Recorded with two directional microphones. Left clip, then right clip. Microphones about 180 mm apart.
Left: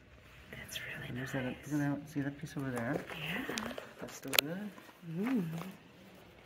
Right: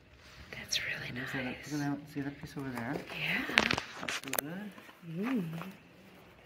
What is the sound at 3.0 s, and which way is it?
Speech, centre (ahead or behind).